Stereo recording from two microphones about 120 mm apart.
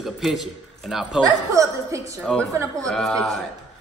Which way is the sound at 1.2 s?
30° right (ahead or behind).